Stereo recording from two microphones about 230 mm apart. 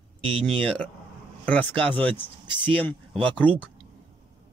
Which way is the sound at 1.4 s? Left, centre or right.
Centre.